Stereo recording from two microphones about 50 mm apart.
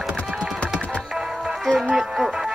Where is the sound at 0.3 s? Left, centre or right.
Centre.